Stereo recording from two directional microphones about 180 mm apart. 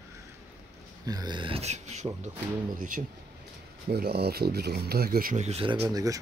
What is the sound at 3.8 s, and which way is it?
Speech, 60° right (ahead or behind).